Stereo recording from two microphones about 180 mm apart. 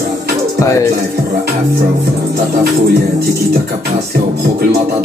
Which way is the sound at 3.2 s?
60° right (ahead or behind).